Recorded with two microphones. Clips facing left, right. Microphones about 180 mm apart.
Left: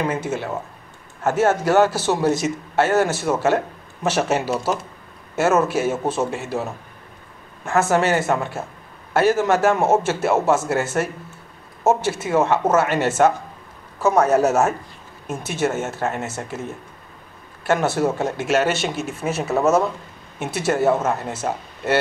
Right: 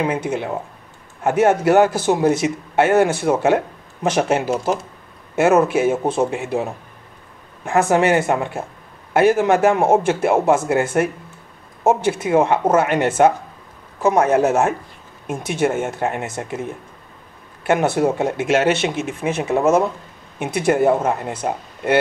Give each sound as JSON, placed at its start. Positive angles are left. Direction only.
{"t": 0.0, "sound": "speech", "side_deg": -10}
{"t": 5.3, "sound": "speech", "side_deg": -15}
{"t": 17.6, "sound": "speech", "side_deg": -15}
{"t": 18.9, "sound": "speech", "side_deg": 0}
{"t": 19.2, "sound": "speech", "side_deg": -15}